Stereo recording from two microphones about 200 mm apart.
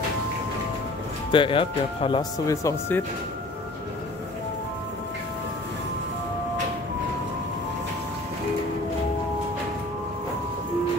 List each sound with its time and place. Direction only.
1.3 s speech: 25° left (ahead or behind)